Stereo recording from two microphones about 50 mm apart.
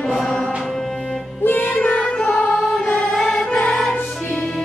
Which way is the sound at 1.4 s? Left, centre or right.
Left.